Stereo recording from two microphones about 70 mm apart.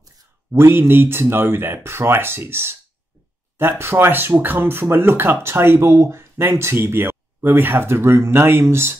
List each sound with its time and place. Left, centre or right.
0.5 s speech: right